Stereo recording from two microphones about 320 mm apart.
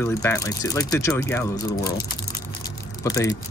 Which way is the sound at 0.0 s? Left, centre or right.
Centre.